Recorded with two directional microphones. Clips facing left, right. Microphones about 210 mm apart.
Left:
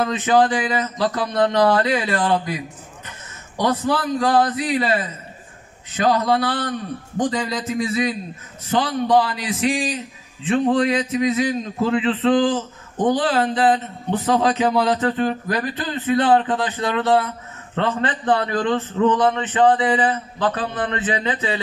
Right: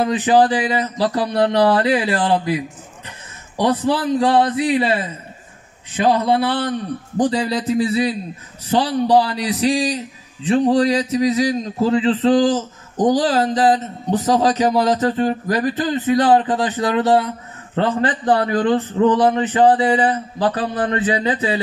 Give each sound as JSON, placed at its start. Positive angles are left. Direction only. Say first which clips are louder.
{"t": 0.0, "sound": "a man's voice", "louder": "right 3 dB", "side_deg": -35}
{"t": 3.5, "sound": "a man's voice", "louder": "right 3 dB", "side_deg": -30}